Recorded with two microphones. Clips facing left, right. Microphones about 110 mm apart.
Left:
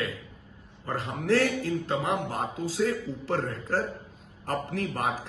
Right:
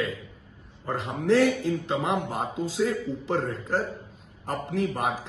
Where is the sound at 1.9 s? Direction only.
20° right (ahead or behind).